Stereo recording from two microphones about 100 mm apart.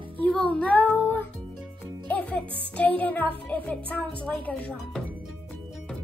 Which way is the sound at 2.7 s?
15° left (ahead or behind).